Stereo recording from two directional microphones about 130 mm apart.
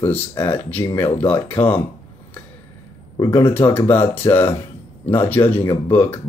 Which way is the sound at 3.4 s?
15° left (ahead or behind).